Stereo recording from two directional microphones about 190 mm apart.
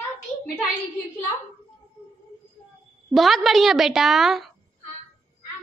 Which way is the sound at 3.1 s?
Centre (ahead or behind).